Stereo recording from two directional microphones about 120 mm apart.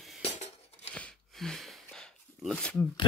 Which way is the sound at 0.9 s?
5° left (ahead or behind).